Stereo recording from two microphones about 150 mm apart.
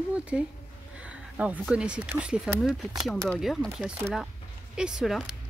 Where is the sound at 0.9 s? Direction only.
5° right (ahead or behind).